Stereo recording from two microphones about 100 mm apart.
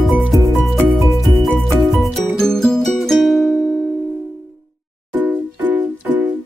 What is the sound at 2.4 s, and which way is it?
Music, 5° left (ahead or behind).